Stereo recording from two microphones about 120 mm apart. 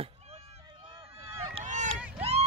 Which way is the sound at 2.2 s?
60° right (ahead or behind).